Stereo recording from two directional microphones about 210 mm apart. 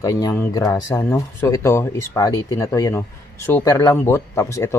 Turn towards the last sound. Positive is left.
turn(degrees=15)  # may be behind; listen again after turning